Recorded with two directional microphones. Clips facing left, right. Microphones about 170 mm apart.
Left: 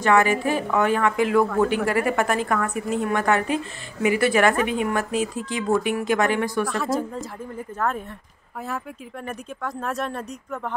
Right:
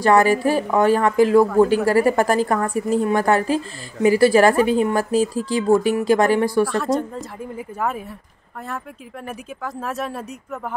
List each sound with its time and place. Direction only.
0.0 s a woman's voice: 35° right (ahead or behind)
6.6 s speech: centre (ahead or behind)